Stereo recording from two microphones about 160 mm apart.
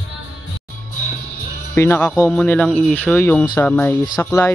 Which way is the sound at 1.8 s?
10° left (ahead or behind).